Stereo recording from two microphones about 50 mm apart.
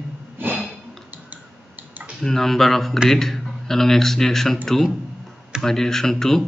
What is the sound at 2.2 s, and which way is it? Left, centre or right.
Speech, centre.